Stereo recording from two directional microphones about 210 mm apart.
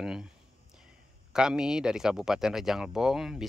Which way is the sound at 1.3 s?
5° right (ahead or behind).